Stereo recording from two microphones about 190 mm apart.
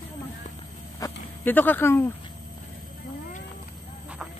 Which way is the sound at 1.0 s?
10° left (ahead or behind).